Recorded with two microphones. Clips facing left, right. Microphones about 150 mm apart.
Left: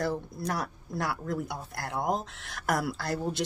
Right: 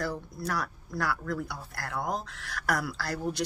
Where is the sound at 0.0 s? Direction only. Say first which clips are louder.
Left 3 dB; 20° left (ahead or behind).